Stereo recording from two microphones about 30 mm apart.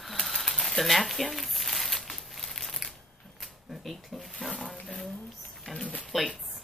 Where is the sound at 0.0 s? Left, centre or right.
Centre.